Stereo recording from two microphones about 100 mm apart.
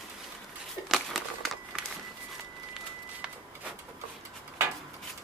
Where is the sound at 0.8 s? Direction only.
5° right (ahead or behind).